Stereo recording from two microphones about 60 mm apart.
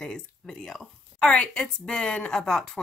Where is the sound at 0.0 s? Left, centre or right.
Centre.